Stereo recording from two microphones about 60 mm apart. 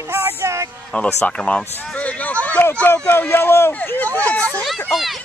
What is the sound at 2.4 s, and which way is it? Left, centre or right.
Speech, left.